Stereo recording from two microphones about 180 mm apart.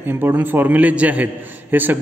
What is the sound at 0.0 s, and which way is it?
A man's voice, 10° right (ahead or behind).